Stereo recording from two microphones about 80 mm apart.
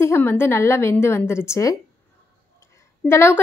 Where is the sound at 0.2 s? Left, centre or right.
Left.